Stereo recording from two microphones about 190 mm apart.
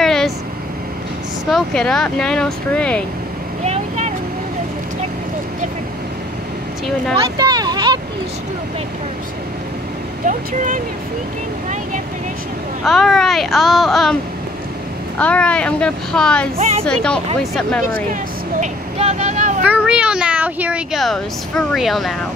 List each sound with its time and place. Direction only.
0.0 s vehicle: centre (ahead or behind)
1.5 s speech: 5° left (ahead or behind)
3.6 s vehicle: 35° right (ahead or behind)
7.3 s a sound: 20° right (ahead or behind)
10.2 s speech: 45° right (ahead or behind)
12.8 s speech: centre (ahead or behind)
15.1 s speech: 5° left (ahead or behind)
16.5 s a woman's voice: 30° right (ahead or behind)
16.8 s speech: 5° left (ahead or behind)
18.6 s speech: 35° right (ahead or behind)
19.6 s speech: 5° right (ahead or behind)